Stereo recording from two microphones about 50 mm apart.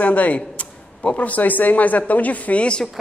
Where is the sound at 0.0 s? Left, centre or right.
Left.